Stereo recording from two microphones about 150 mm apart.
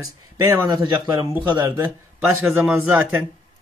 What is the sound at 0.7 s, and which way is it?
Speech, 30° right (ahead or behind).